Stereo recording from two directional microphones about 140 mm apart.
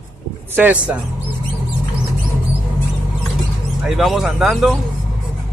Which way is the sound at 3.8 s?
Centre (ahead or behind).